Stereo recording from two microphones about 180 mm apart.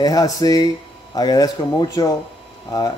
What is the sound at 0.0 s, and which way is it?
Speech, 20° left (ahead or behind).